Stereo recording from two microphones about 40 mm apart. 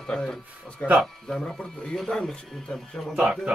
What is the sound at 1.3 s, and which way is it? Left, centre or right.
Speech, centre.